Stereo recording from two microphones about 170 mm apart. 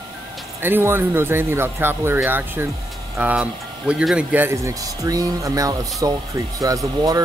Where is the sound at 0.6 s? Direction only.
10° right (ahead or behind).